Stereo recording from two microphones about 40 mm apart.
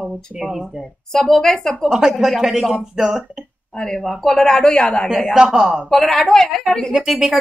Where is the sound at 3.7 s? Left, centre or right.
Left.